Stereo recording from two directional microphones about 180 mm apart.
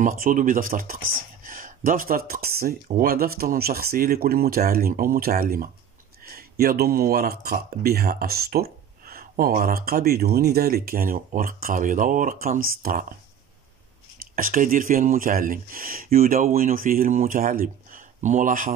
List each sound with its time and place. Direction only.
0.0 s speech: 50° right (ahead or behind)
14.3 s speech: 50° right (ahead or behind)